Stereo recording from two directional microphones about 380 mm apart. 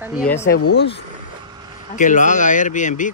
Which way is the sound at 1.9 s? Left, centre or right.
Centre.